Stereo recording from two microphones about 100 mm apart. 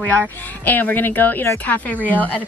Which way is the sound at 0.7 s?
20° left (ahead or behind).